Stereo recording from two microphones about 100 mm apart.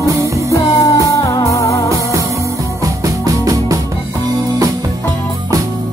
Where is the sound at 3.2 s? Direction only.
35° right (ahead or behind).